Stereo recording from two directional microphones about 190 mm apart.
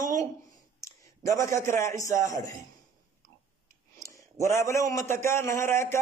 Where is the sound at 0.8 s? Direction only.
15° left (ahead or behind).